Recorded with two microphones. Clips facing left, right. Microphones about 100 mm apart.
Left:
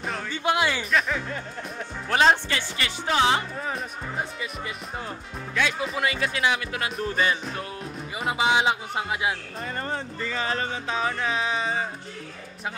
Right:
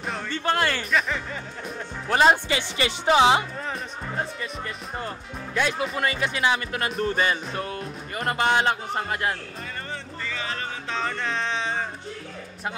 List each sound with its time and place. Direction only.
0.3 s speech: 10° left (ahead or behind)
0.9 s speech: centre (ahead or behind); by 3.4 s 15° right (ahead or behind)
3.5 s speech: 5° left (ahead or behind)
9.8 s music: 40° left (ahead or behind)
10.9 s speech: 10° left (ahead or behind)